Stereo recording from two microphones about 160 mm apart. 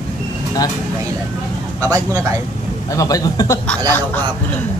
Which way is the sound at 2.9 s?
20° left (ahead or behind).